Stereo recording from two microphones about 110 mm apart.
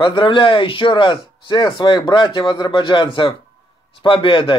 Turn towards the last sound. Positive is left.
turn(degrees=50)  # may be behind; listen again after turning